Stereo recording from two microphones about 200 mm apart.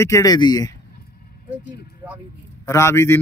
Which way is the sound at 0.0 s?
15° left (ahead or behind).